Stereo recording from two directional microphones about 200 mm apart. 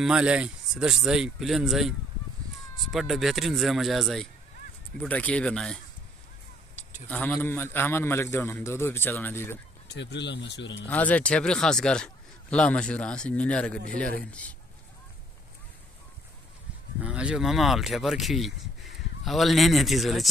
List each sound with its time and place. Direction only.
0.0 s a man's voice: 5° right (ahead or behind)
7.1 s a man's voice: 10° left (ahead or behind)
9.8 s speech: 60° left (ahead or behind)
10.9 s a man's voice: 5° left (ahead or behind)
17.0 s a man's voice: 5° right (ahead or behind)